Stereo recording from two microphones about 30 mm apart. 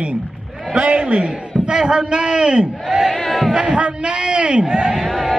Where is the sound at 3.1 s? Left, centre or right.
Centre.